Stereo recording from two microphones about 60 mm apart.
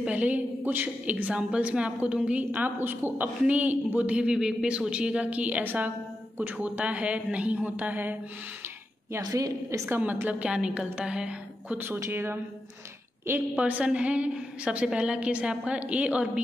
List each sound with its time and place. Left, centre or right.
0.0 s a woman's voice: right
2.5 s a woman's voice: right
9.3 s a woman's voice: right
9.8 s a woman's voice: right
10.2 s a woman's voice: centre
12.1 s a woman's voice: right
13.6 s a woman's voice: right